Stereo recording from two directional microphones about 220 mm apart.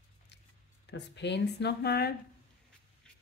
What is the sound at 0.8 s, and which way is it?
Speech, 50° left (ahead or behind).